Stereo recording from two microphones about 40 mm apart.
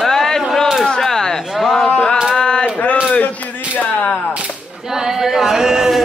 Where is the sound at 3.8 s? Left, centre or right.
Left.